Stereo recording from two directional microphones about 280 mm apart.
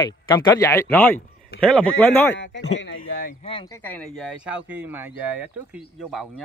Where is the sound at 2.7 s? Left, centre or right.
Left; by 4.0 s centre.